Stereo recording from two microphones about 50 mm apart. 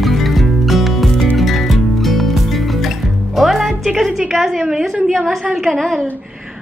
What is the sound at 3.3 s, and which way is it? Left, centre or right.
Music, centre.